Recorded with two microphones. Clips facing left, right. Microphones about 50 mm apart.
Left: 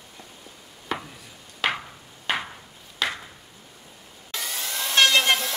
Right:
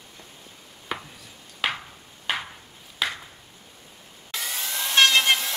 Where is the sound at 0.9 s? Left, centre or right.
Centre.